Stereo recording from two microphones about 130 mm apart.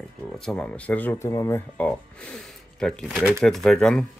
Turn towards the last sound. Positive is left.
turn(degrees=5)  # may be behind; listen again after turning